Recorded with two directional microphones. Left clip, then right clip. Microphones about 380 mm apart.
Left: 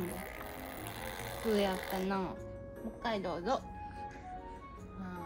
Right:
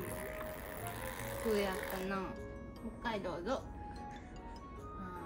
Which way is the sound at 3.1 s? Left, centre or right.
Centre.